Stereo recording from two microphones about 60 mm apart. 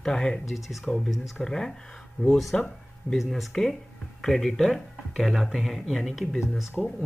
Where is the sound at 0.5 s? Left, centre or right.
Centre.